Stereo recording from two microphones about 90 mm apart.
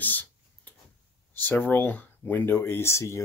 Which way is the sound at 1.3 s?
20° left (ahead or behind).